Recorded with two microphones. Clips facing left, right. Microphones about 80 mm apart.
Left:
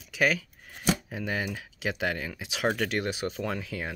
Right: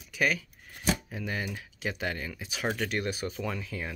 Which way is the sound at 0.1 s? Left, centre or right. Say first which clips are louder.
Left 3 dB; left.